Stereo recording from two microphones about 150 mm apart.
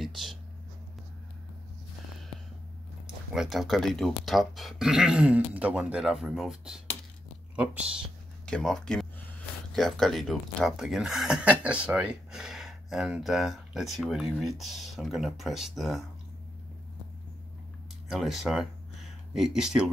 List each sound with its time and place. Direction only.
0.0 s a sound: centre (ahead or behind)
3.3 s speech: centre (ahead or behind)
8.5 s speech: 5° left (ahead or behind)
18.1 s speech: centre (ahead or behind)